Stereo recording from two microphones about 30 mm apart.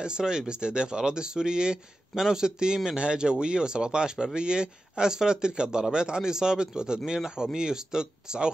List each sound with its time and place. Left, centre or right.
0.0 s speech: right